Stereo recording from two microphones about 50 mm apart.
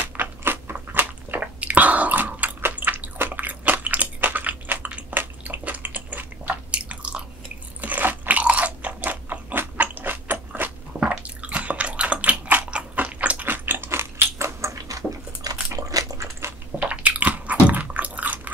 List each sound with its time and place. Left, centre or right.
0.4 s biting: right
0.7 s biting: right
1.4 s chewing: right
2.6 s a sound: right
3.2 s biting: right
6.7 s chewing: right
7.8 s crunch: right
9.8 s a sound: right
11.1 s bathtub: right
12.7 s biting: right
13.7 s biting: right
15.7 s a sound: right
16.8 s chewing: right